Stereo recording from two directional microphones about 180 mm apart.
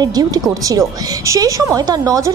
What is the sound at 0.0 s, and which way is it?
Speech, 20° right (ahead or behind).